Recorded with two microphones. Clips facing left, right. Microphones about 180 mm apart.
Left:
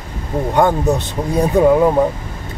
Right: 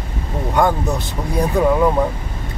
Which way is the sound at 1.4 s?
20° left (ahead or behind).